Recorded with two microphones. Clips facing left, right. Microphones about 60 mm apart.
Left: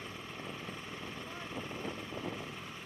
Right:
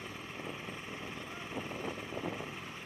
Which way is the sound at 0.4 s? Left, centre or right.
Centre.